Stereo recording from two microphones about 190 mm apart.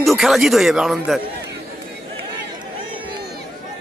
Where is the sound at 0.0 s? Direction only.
Centre (ahead or behind).